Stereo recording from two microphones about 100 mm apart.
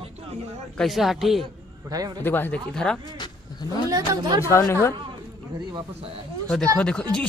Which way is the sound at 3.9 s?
40° right (ahead or behind).